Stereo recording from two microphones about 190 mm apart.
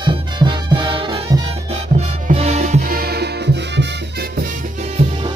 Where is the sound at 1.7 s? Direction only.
35° right (ahead or behind); by 3.8 s 65° right (ahead or behind).